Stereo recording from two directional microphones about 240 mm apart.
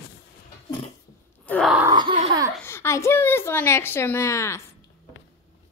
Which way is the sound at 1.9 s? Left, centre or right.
Right.